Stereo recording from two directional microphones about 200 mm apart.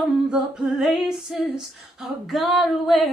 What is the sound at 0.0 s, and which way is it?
Female singing, centre (ahead or behind).